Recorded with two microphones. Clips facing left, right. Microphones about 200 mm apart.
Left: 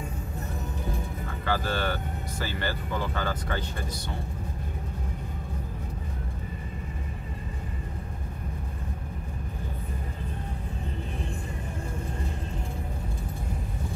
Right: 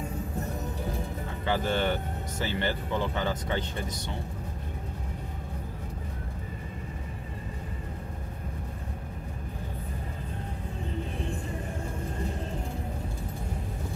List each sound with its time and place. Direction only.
1.4 s speech: 20° right (ahead or behind)